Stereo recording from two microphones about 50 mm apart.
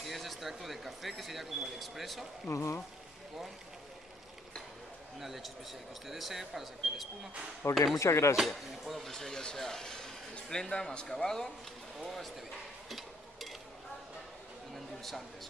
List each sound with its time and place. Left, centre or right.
0.0 s speech: centre
2.5 s speech: left
5.2 s speech: centre
7.6 s speech: left
8.0 s speech: left
8.5 s speech: centre
12.0 s speech: centre
12.9 s a sound: centre